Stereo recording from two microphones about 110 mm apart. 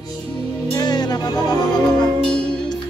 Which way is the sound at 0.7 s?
40° left (ahead or behind).